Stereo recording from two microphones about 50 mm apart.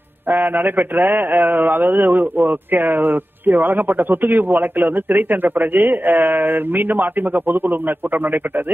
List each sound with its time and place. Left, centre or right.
0.3 s a man's voice: right